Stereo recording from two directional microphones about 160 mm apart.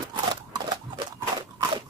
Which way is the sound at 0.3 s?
25° right (ahead or behind).